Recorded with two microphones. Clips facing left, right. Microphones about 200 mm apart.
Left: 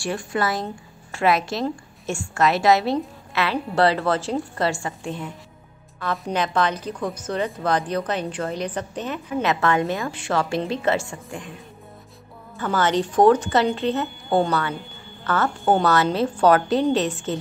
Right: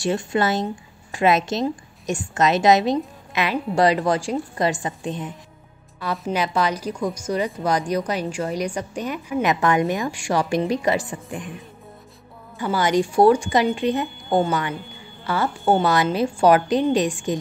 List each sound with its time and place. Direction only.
0.0 s a woman's voice: 25° right (ahead or behind)
6.1 s a woman's voice: 5° right (ahead or behind)
12.5 s a woman's voice: 10° right (ahead or behind)